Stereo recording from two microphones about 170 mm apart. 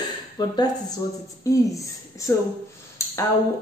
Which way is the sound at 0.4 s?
25° left (ahead or behind).